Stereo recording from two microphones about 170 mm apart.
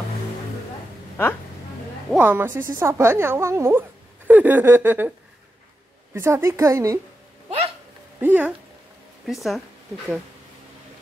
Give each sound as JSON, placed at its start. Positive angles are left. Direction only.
{"t": 2.1, "sound": "a woman's voice", "side_deg": -10}
{"t": 6.1, "sound": "a woman's voice", "side_deg": -15}
{"t": 7.4, "sound": "hiccup", "side_deg": -40}
{"t": 8.2, "sound": "speech", "side_deg": -10}